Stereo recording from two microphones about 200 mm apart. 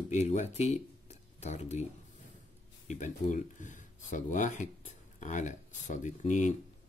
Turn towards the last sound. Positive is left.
turn(degrees=40)  # may be behind; listen again after turning